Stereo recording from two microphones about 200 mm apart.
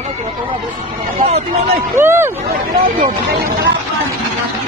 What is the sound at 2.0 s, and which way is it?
Hubbub, 10° right (ahead or behind).